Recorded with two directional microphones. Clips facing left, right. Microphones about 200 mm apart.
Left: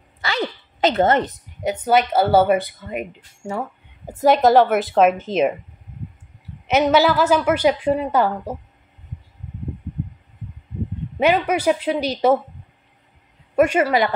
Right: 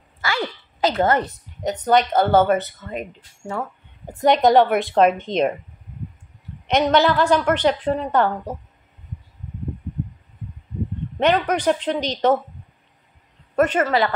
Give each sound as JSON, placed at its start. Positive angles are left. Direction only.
{"t": 0.2, "sound": "a sound", "side_deg": 20}
{"t": 1.6, "sound": "a woman's voice", "side_deg": 10}
{"t": 6.7, "sound": "speech", "side_deg": 5}
{"t": 11.1, "sound": "speech", "side_deg": 10}
{"t": 13.6, "sound": "speech", "side_deg": 10}